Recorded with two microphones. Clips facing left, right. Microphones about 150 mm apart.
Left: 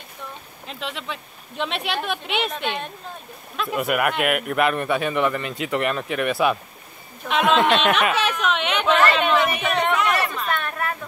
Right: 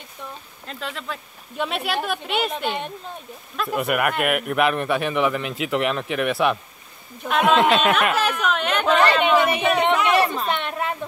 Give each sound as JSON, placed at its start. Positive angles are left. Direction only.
{"t": 0.7, "sound": "speech", "side_deg": 0}
{"t": 3.5, "sound": "speech", "side_deg": 0}
{"t": 9.5, "sound": "a woman's voice", "side_deg": -25}